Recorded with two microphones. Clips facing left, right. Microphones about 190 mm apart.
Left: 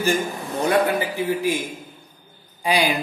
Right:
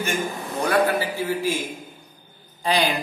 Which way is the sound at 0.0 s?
35° left (ahead or behind).